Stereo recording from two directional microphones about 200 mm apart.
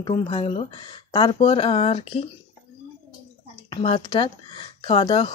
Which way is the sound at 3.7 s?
25° left (ahead or behind).